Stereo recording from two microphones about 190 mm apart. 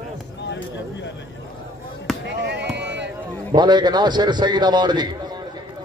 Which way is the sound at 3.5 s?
20° right (ahead or behind).